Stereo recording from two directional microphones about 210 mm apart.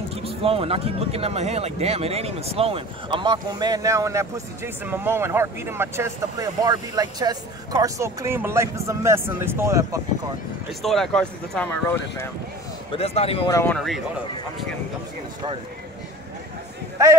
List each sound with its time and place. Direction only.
0.1 s speech: 30° right (ahead or behind)
10.8 s speech: centre (ahead or behind)
12.9 s a man's voice: 30° left (ahead or behind)
13.5 s speech: 15° left (ahead or behind)
13.7 s speech: centre (ahead or behind)